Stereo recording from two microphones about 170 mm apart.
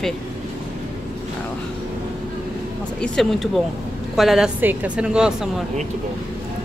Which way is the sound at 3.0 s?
Centre (ahead or behind).